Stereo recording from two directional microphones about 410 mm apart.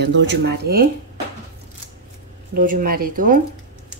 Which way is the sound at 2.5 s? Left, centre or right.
Centre.